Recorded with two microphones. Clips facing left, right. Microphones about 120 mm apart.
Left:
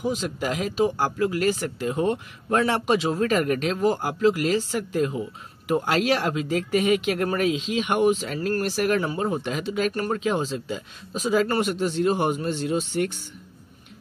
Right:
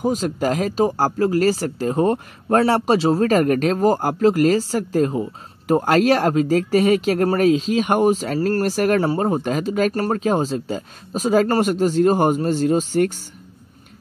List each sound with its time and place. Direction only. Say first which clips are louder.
0.0 s speech: right 6 dB; 45° right (ahead or behind)